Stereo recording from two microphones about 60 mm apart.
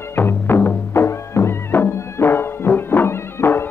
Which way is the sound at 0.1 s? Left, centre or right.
Left.